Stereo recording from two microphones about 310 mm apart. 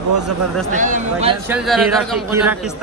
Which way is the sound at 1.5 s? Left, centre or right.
Centre.